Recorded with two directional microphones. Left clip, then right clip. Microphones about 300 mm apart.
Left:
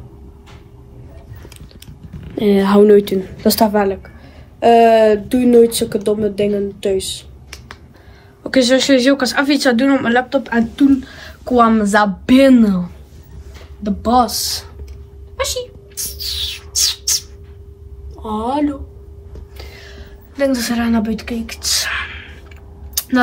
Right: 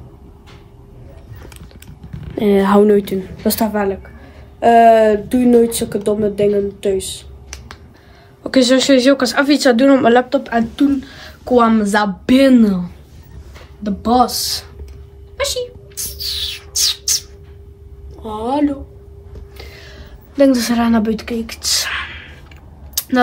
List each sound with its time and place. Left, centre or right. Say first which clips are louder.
2.3 s speech: even; centre
15.3 s bird: right 1 dB; centre
18.2 s speech: even; centre
19.5 s a sound: even; centre
22.9 s vehicle: right 1 dB; centre